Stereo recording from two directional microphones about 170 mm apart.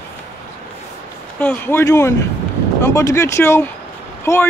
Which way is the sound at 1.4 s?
10° left (ahead or behind).